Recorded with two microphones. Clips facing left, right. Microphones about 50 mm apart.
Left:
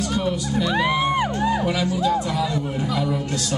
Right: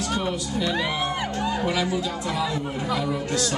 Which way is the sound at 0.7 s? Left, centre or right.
Left.